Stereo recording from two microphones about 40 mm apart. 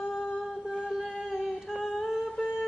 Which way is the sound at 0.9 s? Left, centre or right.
Centre.